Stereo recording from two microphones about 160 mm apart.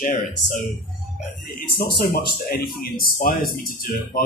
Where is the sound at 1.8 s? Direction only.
75° left (ahead or behind).